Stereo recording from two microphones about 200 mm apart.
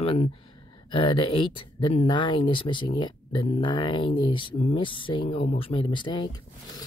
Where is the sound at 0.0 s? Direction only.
30° left (ahead or behind).